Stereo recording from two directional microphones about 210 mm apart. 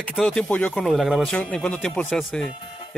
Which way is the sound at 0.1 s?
Centre (ahead or behind).